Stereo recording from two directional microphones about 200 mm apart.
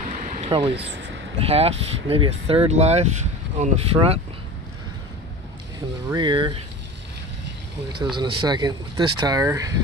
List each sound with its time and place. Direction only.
0.2 s a sound: 30° right (ahead or behind)
1.4 s speech: 30° right (ahead or behind)
6.0 s speech: 20° right (ahead or behind)
8.0 s speech: 20° right (ahead or behind)